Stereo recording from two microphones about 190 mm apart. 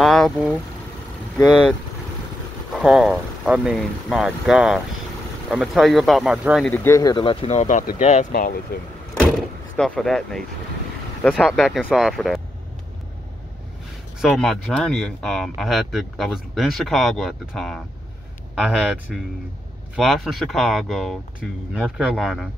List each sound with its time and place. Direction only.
0.0 s vehicle: centre (ahead or behind)
2.7 s speech: centre (ahead or behind)
6.6 s speech: 10° left (ahead or behind); by 8.3 s 40° left (ahead or behind)
8.3 s speech: 50° left (ahead or behind)
9.8 s speech: 5° left (ahead or behind)
14.2 s speech: centre (ahead or behind)
20.0 s speech: centre (ahead or behind)